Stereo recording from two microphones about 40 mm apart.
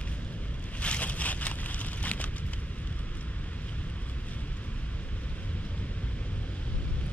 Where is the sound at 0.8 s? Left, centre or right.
Left.